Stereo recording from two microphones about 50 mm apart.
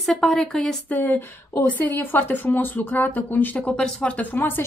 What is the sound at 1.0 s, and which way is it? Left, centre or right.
Speech, left.